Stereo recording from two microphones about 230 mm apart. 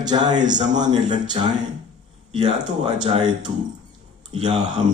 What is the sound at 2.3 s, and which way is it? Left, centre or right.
Speech, right.